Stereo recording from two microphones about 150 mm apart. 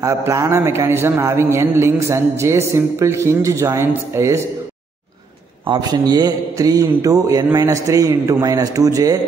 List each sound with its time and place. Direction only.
0.0 s a man's voice: 20° right (ahead or behind)
5.7 s a man's voice: 25° right (ahead or behind)